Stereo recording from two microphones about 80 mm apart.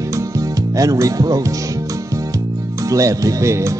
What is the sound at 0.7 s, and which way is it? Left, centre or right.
Music, right.